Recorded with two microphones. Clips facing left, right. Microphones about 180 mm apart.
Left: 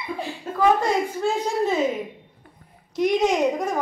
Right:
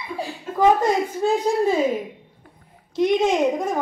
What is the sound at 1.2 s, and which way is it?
Speech, 10° right (ahead or behind).